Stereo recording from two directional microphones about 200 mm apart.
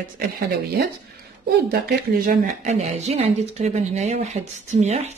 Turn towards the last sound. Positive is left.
turn(degrees=-35)  # may be behind; listen again after turning